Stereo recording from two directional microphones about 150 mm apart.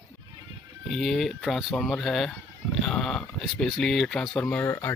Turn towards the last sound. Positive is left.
turn(degrees=15)  # may be behind; listen again after turning